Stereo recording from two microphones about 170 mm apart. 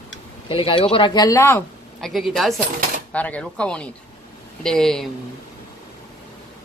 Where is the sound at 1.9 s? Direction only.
Centre (ahead or behind).